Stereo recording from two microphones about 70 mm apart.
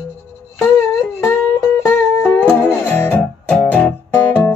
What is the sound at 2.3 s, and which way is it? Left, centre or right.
Music, left.